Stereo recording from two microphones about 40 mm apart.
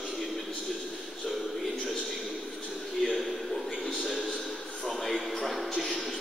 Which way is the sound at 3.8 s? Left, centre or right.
Left.